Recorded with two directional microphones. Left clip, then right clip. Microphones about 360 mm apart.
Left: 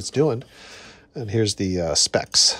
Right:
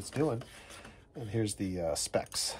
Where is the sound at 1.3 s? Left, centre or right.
Centre.